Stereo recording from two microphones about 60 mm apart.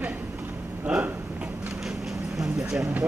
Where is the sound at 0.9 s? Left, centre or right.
Centre.